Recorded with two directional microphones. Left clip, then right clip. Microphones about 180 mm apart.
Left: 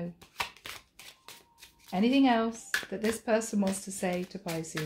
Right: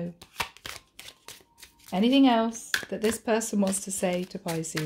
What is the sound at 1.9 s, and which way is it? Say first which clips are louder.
Speech: right 4 dB; 55° right (ahead or behind).